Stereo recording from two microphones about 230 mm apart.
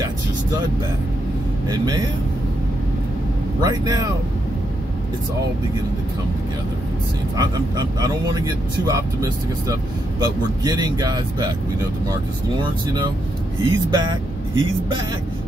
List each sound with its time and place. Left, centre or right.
1.7 s speech: centre
3.6 s speech: centre
7.3 s speech: centre
10.2 s speech: centre
12.6 s a man's voice: centre